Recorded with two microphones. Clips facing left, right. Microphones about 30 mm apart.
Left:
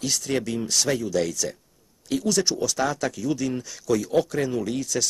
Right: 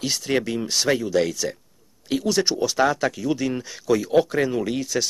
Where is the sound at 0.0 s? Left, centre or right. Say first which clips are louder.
Right 3 dB; right.